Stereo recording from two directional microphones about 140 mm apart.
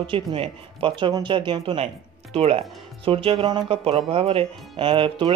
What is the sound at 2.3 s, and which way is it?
Speech, 45° right (ahead or behind).